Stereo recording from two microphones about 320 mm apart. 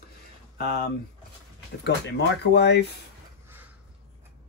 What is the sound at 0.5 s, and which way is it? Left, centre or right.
Speech, left.